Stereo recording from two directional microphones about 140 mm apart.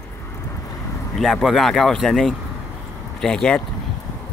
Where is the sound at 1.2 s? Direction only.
Centre (ahead or behind).